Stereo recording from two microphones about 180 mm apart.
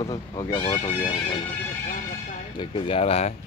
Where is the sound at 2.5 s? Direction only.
30° left (ahead or behind).